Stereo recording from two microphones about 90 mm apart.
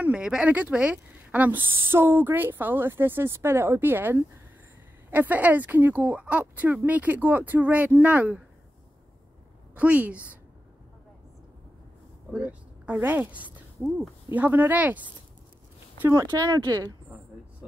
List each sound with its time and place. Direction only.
0.0 s speech: 10° right (ahead or behind)
9.8 s a woman's voice: 15° right (ahead or behind)
12.3 s a woman's voice: 15° right (ahead or behind)
16.3 s speech: 45° right (ahead or behind)